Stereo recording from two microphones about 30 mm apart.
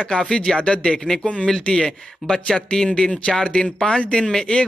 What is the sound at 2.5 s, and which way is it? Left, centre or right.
Speech, left.